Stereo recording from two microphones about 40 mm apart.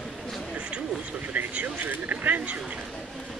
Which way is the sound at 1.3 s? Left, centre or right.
Right.